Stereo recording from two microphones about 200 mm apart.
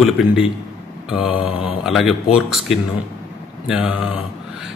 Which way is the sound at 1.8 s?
Centre (ahead or behind).